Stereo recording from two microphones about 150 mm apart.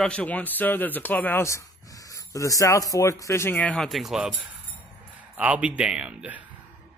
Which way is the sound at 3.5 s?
5° left (ahead or behind).